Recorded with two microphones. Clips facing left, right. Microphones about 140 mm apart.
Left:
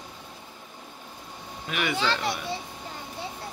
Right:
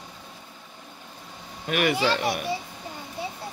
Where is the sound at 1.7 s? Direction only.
50° right (ahead or behind).